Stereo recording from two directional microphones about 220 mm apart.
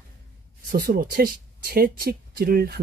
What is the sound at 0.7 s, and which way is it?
Speech, 40° right (ahead or behind).